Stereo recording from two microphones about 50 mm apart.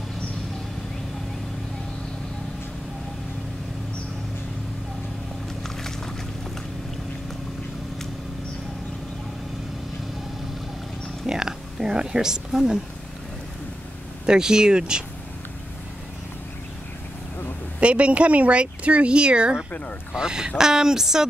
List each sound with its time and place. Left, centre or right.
11.2 s a sound: centre
14.2 s speech: centre
17.7 s speech: right